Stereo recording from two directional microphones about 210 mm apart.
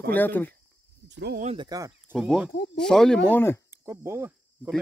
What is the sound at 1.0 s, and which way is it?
Speech, 55° right (ahead or behind).